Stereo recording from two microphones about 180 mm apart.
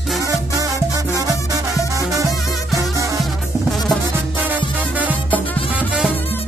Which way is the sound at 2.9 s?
20° right (ahead or behind).